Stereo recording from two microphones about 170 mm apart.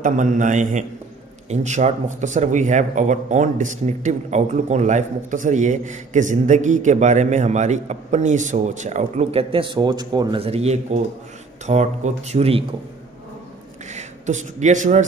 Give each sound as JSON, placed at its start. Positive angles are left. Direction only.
{"t": 0.0, "sound": "a man's voice", "side_deg": -50}
{"t": 13.8, "sound": "speech", "side_deg": -45}